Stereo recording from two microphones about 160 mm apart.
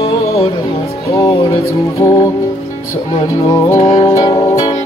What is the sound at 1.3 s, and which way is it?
Music, 35° left (ahead or behind).